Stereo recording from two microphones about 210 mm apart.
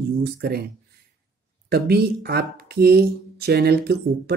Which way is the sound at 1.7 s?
50° right (ahead or behind).